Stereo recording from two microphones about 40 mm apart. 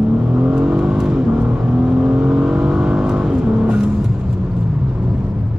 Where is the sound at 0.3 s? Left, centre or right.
Right.